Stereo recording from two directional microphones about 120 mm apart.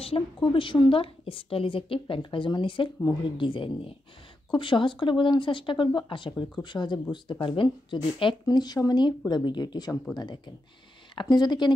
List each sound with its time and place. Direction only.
0.0 s a woman's voice: 50° left (ahead or behind)